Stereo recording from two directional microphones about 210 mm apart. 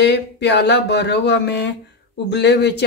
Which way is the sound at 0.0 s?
55° left (ahead or behind).